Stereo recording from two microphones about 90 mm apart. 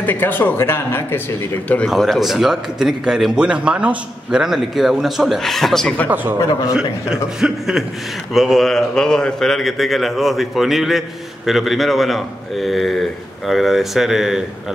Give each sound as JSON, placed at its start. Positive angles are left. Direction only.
{"t": 0.0, "sound": "speech", "side_deg": 20}
{"t": 1.9, "sound": "a man's voice", "side_deg": 0}
{"t": 6.0, "sound": "a man's voice", "side_deg": -20}
{"t": 6.7, "sound": "a man's voice", "side_deg": -5}